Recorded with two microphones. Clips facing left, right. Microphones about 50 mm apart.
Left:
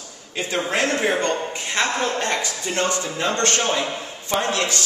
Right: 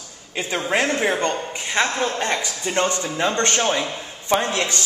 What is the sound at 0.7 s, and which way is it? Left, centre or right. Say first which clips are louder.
A man's voice: right 1 dB; centre.